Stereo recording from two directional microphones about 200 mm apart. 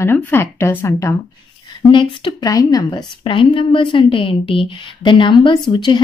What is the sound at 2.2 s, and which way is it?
A woman's voice, 15° left (ahead or behind).